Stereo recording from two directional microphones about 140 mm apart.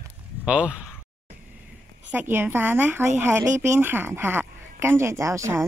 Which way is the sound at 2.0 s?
15° right (ahead or behind).